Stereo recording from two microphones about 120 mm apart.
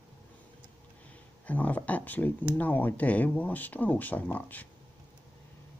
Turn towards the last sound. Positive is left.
turn(degrees=15)  # may be behind; listen again after turning